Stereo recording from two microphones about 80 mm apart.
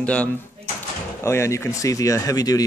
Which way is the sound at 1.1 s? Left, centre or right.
Left.